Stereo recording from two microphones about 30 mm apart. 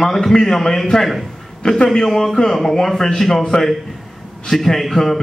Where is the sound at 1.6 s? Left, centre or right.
Left.